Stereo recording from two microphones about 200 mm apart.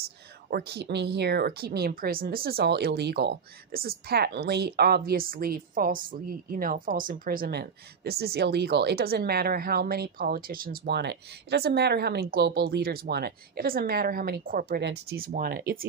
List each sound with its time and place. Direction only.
0.0 s speech: 50° right (ahead or behind)